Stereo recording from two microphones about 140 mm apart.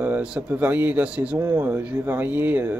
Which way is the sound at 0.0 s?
10° right (ahead or behind).